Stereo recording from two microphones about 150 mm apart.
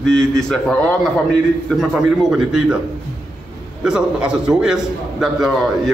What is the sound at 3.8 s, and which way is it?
A man's voice, 5° right (ahead or behind).